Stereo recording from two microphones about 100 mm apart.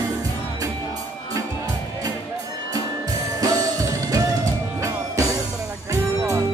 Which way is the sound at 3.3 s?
40° right (ahead or behind).